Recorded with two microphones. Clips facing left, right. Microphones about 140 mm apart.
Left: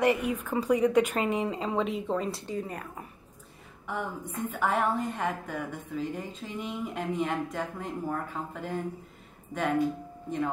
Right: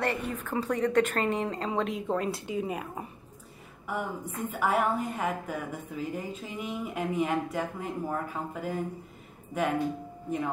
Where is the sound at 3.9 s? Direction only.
10° right (ahead or behind).